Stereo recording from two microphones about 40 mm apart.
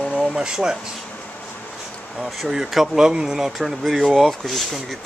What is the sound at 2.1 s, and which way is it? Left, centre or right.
Speech, centre.